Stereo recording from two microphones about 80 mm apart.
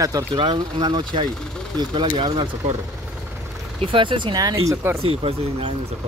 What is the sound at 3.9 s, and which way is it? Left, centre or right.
Speech, right.